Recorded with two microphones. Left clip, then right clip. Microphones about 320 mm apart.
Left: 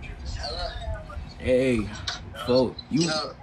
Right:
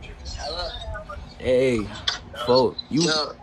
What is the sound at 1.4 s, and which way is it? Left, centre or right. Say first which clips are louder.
Speech: right 2 dB; centre.